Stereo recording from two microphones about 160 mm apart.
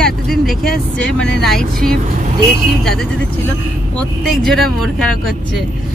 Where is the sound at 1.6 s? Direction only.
65° right (ahead or behind).